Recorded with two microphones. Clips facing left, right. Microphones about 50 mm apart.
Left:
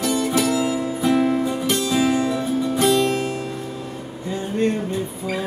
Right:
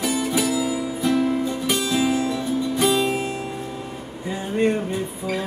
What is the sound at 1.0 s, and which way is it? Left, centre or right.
Music, centre.